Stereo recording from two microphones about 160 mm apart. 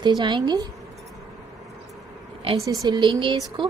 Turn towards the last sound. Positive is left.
turn(degrees=-30)  # may be behind; listen again after turning